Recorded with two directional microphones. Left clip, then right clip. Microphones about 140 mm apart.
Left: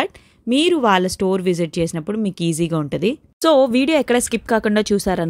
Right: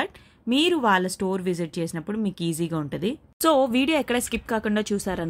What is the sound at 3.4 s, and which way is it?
Speech, 30° left (ahead or behind).